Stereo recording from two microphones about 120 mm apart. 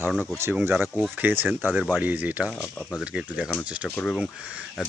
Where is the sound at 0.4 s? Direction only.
20° right (ahead or behind).